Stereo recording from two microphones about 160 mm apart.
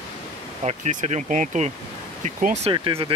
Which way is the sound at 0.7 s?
45° right (ahead or behind).